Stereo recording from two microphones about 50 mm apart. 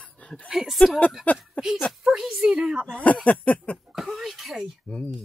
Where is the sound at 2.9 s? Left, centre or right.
Left.